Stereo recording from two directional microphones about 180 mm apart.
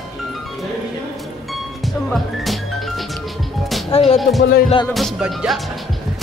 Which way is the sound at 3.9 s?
30° left (ahead or behind).